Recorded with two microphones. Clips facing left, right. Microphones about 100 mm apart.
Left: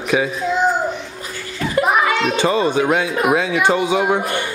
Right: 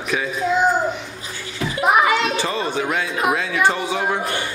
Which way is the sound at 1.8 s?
5° right (ahead or behind).